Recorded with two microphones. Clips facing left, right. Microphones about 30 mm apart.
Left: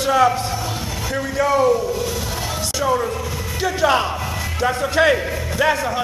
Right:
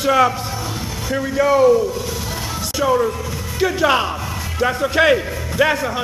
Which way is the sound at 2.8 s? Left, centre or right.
Centre.